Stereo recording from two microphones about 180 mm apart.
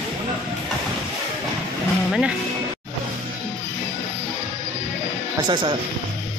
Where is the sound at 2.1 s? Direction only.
5° right (ahead or behind).